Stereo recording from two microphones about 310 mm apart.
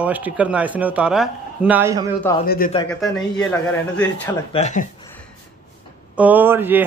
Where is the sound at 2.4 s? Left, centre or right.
Left.